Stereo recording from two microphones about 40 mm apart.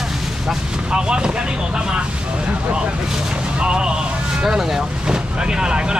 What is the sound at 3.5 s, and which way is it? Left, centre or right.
Speech, right.